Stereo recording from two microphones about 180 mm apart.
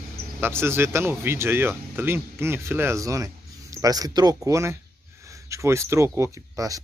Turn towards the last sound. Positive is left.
turn(degrees=-20)  # may be behind; listen again after turning